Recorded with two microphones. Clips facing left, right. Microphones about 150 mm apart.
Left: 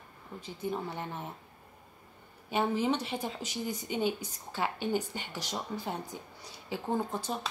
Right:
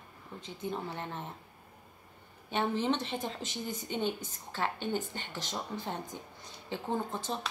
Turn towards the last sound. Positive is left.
turn(degrees=10)  # may be behind; listen again after turning